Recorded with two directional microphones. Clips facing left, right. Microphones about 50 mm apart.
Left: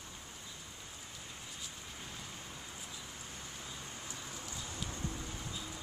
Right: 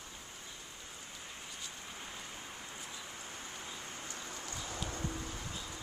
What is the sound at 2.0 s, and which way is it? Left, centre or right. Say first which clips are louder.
Rain: even; centre.